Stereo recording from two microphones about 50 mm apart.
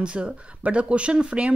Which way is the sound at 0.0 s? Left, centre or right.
Right.